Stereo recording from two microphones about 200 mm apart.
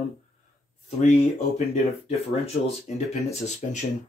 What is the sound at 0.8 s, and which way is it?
Speech, 35° left (ahead or behind).